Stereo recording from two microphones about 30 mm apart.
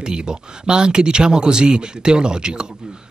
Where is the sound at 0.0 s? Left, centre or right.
Right.